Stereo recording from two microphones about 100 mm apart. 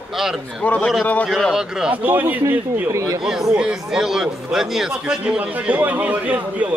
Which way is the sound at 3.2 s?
5° right (ahead or behind).